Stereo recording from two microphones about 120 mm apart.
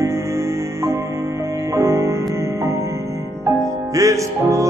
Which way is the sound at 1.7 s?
25° right (ahead or behind).